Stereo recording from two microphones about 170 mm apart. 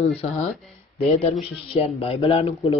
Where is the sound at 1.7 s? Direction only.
35° left (ahead or behind).